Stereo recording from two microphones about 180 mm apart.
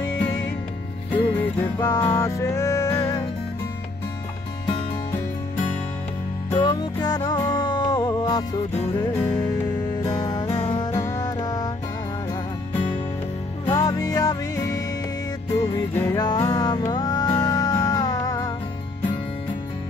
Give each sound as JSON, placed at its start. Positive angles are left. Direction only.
{"t": 1.1, "sound": "music", "side_deg": 10}
{"t": 6.5, "sound": "music", "side_deg": 25}
{"t": 13.7, "sound": "music", "side_deg": 20}